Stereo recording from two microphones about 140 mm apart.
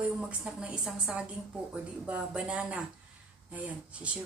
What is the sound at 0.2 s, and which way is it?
Speech, 5° right (ahead or behind).